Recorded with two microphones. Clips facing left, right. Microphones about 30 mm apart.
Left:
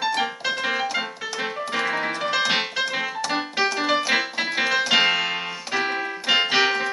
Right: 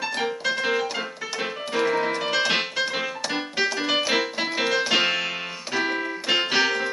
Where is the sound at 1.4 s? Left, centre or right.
Centre.